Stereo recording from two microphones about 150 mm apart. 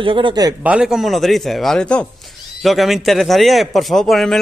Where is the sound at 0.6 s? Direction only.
5° right (ahead or behind).